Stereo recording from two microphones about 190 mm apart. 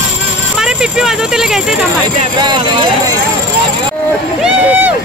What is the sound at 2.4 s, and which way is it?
Speech, 25° right (ahead or behind).